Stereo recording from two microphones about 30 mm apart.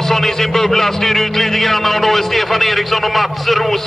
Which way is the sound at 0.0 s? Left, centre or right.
Centre.